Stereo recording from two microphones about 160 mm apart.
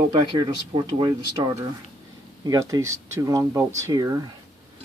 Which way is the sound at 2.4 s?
20° right (ahead or behind).